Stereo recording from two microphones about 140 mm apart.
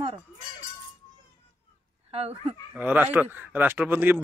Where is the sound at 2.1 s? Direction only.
45° right (ahead or behind).